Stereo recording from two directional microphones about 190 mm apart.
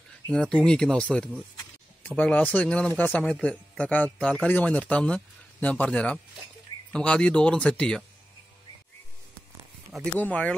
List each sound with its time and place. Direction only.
0.3 s speech: 5° left (ahead or behind)
10.1 s speech: 10° left (ahead or behind)